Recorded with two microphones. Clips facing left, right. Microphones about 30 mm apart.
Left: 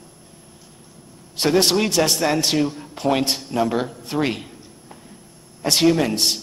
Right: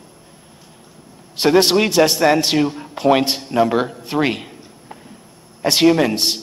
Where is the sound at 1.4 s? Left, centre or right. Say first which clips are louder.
Right 4 dB; centre.